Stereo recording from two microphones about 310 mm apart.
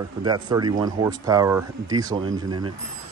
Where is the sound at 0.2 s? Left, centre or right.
Centre.